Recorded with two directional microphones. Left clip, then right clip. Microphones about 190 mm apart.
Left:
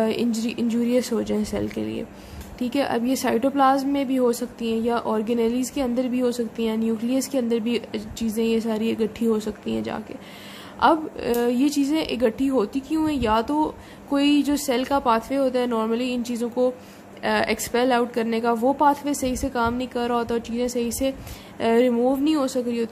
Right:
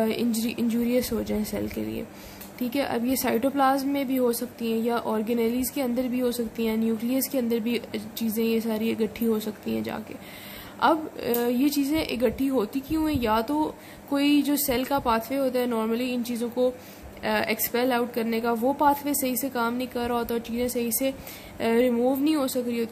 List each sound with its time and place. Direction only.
0.0 s a woman's voice: 5° left (ahead or behind)